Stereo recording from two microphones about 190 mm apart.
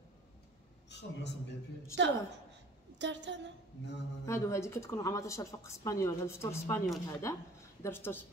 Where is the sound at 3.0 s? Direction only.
70° right (ahead or behind).